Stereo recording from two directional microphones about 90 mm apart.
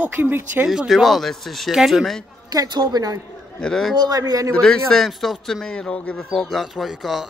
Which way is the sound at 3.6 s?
5° left (ahead or behind).